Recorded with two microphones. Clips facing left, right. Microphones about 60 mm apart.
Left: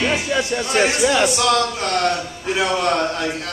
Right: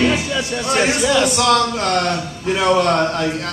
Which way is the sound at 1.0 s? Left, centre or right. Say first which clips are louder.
Right 1 dB; centre.